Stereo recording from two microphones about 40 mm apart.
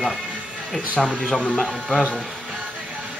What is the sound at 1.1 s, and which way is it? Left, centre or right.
Speech, centre.